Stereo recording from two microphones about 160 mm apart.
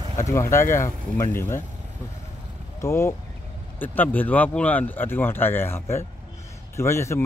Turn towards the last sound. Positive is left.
turn(degrees=15)  # may be behind; listen again after turning